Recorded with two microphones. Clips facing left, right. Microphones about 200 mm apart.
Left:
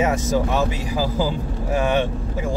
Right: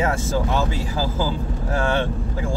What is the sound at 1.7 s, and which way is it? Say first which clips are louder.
Speech: left 2 dB; 15° left (ahead or behind).